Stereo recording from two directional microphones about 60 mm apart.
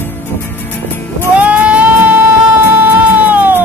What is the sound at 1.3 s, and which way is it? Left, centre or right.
Music, right.